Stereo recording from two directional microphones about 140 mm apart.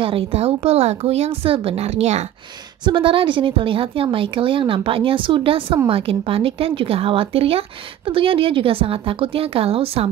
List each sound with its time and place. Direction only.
0.0 s a woman's voice: 40° right (ahead or behind)
2.8 s speech: 35° right (ahead or behind)